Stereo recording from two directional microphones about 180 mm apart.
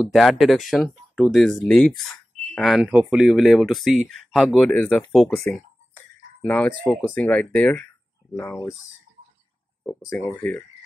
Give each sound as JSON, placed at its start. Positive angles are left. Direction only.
{"t": 0.0, "sound": "speech", "side_deg": 0}
{"t": 5.5, "sound": "a sound", "side_deg": 10}
{"t": 6.8, "sound": "speech", "side_deg": 5}
{"t": 9.8, "sound": "speech", "side_deg": 10}